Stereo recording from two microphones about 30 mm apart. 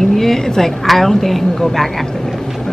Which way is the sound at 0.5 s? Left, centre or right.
Centre.